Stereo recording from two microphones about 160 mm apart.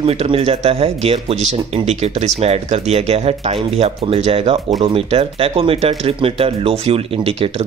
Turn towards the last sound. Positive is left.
turn(degrees=-35)  # may be behind; listen again after turning